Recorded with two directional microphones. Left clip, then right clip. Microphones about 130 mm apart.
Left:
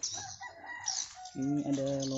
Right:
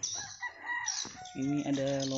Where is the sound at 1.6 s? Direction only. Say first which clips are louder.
Right 1 dB; 5° left (ahead or behind).